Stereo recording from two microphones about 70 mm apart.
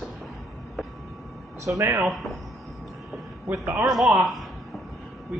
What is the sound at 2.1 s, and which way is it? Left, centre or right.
Speech, centre.